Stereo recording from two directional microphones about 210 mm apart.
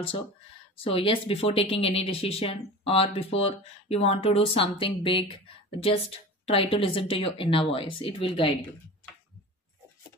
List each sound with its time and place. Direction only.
0.7 s speech: 25° left (ahead or behind)